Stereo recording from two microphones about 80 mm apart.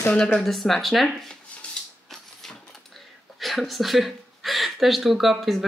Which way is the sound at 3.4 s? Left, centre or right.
Centre.